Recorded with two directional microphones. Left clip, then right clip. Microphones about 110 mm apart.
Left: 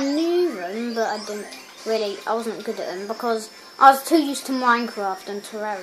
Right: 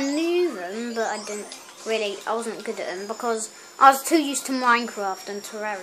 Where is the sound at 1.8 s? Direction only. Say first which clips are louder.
Left 2 dB; centre (ahead or behind); by 3.2 s 15° right (ahead or behind).